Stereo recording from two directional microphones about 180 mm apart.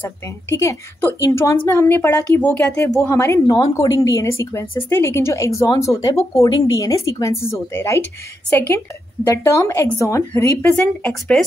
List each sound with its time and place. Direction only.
0.0 s a woman's voice: 15° left (ahead or behind)